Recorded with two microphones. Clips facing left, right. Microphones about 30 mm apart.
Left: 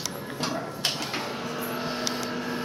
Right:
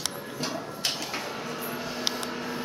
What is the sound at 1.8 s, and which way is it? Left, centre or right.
Vehicle, left.